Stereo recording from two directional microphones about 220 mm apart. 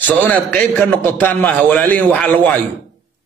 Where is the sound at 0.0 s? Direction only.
5° left (ahead or behind).